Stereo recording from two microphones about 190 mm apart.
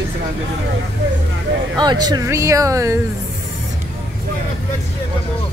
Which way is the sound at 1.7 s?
20° right (ahead or behind).